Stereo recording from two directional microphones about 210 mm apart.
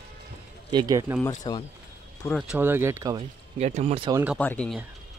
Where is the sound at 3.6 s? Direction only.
30° right (ahead or behind).